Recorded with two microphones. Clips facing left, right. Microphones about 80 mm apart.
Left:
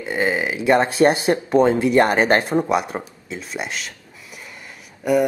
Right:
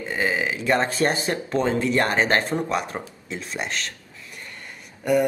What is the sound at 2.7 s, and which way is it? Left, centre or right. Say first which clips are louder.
Speech: left 5 dB; centre.